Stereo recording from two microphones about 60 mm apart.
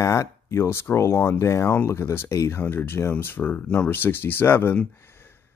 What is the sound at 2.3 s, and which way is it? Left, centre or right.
Speech, left.